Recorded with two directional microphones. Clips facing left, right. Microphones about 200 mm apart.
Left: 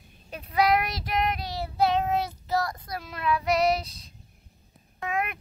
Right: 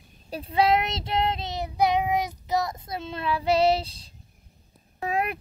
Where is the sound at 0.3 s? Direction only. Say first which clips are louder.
Right 1 dB; 30° right (ahead or behind).